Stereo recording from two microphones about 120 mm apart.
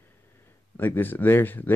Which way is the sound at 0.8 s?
15° left (ahead or behind).